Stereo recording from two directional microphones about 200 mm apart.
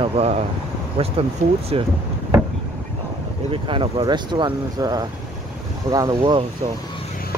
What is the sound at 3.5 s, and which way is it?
Speech, 25° right (ahead or behind).